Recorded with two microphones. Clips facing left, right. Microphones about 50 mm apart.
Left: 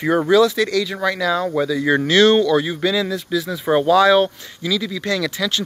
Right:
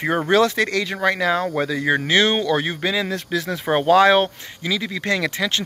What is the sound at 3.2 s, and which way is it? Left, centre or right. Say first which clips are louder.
Speech: left 2 dB; right.